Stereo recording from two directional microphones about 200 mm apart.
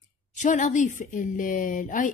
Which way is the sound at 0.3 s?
40° left (ahead or behind).